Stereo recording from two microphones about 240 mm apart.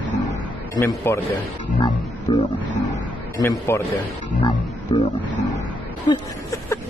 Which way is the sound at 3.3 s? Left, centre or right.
Centre.